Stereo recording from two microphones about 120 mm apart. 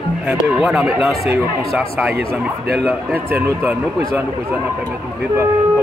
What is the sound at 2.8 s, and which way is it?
Speech, 15° right (ahead or behind).